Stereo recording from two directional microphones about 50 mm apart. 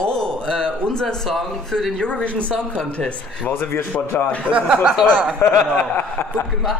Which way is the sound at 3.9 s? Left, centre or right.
Left.